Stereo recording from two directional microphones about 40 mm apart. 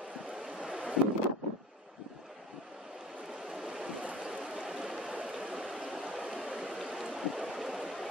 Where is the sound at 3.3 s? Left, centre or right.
Centre.